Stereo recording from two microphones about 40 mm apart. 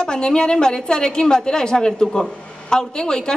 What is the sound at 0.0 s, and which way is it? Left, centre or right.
A woman's voice, centre.